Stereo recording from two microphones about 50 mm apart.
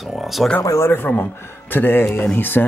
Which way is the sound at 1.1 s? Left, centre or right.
Left.